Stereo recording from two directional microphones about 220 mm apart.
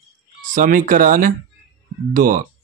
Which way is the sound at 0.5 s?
35° right (ahead or behind).